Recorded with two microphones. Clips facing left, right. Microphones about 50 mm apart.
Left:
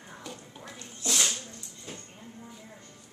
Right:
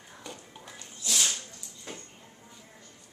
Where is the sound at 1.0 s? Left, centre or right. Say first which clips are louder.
Left 2 dB; left.